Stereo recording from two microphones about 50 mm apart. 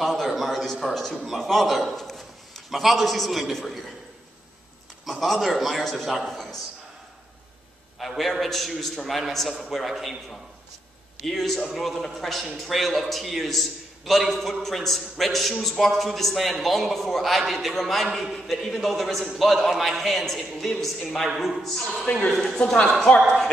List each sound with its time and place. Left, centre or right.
0.0 s a sound: centre
1.3 s a man's voice: centre
5.0 s a man's voice: centre
8.0 s a man's voice: centre
11.2 s a man's voice: centre
22.1 s speech: left
22.6 s speech: centre